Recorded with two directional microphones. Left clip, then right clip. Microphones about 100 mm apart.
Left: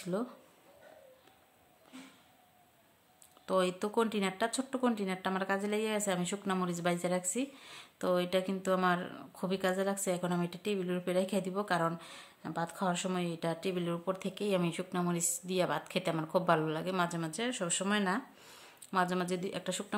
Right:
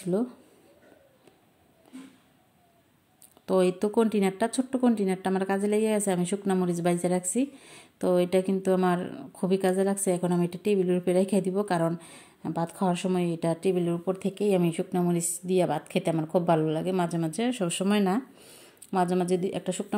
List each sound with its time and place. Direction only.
0.1 s speech: 30° right (ahead or behind)
3.4 s speech: 35° right (ahead or behind)
18.4 s a sound: 20° right (ahead or behind)
18.9 s speech: 25° right (ahead or behind)